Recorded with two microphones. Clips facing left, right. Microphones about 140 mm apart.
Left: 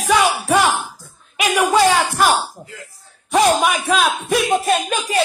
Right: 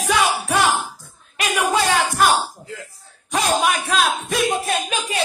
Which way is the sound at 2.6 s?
50° left (ahead or behind).